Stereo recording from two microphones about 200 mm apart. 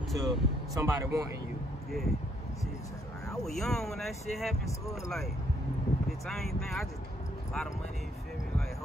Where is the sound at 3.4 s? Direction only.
Centre (ahead or behind).